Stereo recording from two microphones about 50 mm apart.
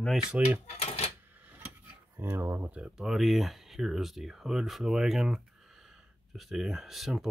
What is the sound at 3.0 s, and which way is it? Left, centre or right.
Speech, centre.